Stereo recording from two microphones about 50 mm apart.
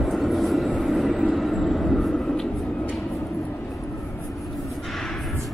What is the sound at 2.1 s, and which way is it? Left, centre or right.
Vehicle, centre.